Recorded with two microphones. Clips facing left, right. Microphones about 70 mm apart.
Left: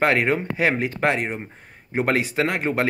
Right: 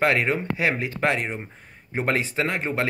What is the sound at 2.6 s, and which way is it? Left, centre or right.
Speech, left.